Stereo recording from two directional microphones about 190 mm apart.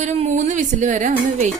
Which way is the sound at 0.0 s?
35° right (ahead or behind).